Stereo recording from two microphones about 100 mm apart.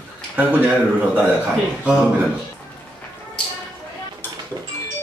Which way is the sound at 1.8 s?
10° right (ahead or behind).